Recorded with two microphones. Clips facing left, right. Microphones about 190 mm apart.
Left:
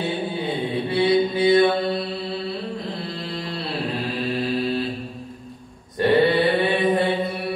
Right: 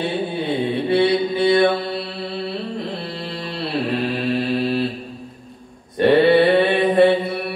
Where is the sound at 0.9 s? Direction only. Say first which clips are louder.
Right 1 dB; 60° right (ahead or behind).